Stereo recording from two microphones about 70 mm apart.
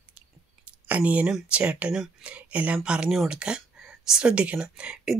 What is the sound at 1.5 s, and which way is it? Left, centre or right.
Speech, centre.